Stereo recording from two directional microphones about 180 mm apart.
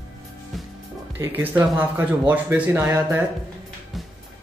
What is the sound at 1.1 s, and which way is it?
Speech, 10° right (ahead or behind).